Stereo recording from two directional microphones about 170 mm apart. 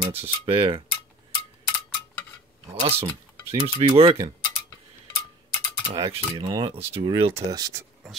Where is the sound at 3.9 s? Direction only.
30° right (ahead or behind).